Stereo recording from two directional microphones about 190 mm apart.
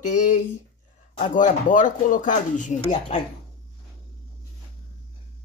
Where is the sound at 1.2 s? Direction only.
40° left (ahead or behind).